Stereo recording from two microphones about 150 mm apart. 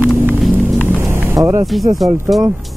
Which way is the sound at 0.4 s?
Centre (ahead or behind).